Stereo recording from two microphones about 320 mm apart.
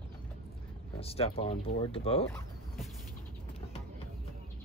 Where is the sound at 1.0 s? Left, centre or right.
Centre.